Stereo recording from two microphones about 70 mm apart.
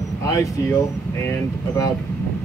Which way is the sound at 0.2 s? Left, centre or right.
Left.